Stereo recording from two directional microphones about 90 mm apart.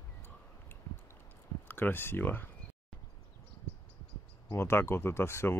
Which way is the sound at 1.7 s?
20° left (ahead or behind).